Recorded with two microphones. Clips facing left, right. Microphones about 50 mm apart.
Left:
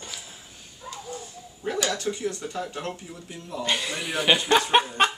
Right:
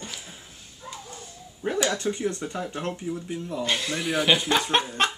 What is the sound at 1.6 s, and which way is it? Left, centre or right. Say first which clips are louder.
Speech: right 2 dB; centre.